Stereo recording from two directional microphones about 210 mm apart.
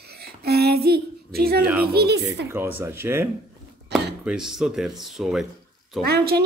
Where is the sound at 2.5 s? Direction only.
10° right (ahead or behind).